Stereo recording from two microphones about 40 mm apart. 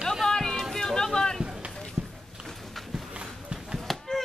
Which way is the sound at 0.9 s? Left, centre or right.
Centre.